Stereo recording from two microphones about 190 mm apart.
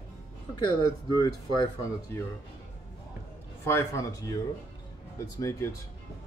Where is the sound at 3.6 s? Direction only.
15° left (ahead or behind).